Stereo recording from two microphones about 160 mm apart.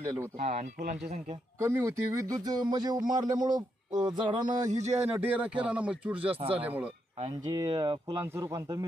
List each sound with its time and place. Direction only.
0.4 s speech: 45° right (ahead or behind)
1.6 s speech: 20° right (ahead or behind)
4.5 s speech: 50° right (ahead or behind)
5.0 s speech: 10° right (ahead or behind)
7.2 s speech: 30° right (ahead or behind)